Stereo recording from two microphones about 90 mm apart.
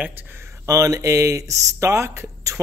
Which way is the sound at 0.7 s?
40° right (ahead or behind).